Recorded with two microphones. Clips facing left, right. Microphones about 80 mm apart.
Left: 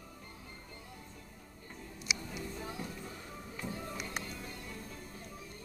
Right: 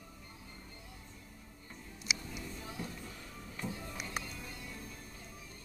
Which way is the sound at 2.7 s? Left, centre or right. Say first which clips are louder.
Left 1 dB; centre.